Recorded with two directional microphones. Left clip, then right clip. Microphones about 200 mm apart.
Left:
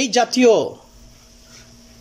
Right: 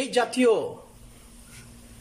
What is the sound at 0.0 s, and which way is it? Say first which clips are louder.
Speech: left 7 dB; 30° left (ahead or behind).